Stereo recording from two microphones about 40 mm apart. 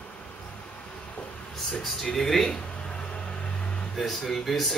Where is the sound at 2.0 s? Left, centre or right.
Centre.